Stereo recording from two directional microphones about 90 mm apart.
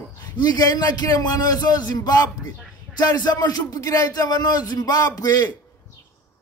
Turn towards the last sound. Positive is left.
turn(degrees=45)  # may be behind; listen again after turning